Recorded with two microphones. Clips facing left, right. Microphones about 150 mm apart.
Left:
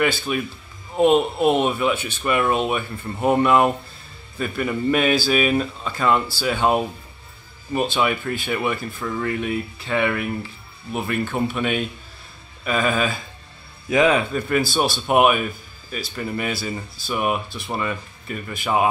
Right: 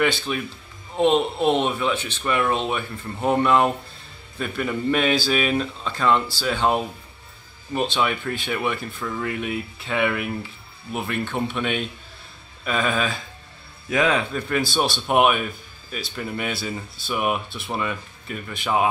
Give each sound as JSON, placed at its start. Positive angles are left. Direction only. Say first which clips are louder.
{"t": 0.0, "sound": "speech", "louder": "left 1 dB", "side_deg": 5}